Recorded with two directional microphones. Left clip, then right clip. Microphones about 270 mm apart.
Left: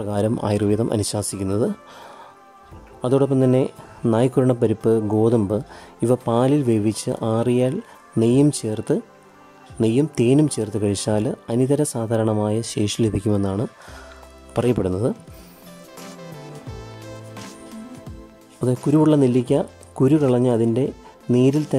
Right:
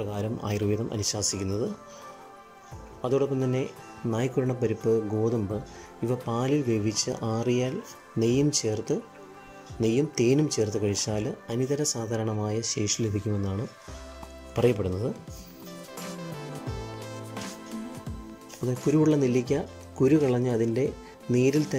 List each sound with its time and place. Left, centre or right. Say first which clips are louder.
0.0 s speech: left 10 dB; centre
3.0 s speech: left 8 dB; centre
14.5 s speech: left 4 dB; centre
16.0 s music: left 1 dB; centre
18.9 s speech: left 6 dB; centre